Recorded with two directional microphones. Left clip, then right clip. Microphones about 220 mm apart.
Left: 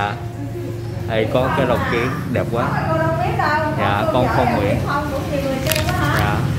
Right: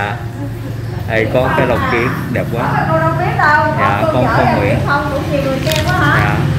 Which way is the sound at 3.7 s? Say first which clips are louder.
Right 5 dB; 15° left (ahead or behind).